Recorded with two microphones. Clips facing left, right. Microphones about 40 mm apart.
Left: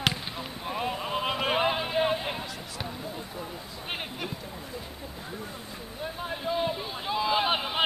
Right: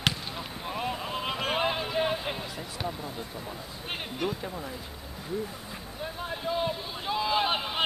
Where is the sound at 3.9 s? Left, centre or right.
Centre.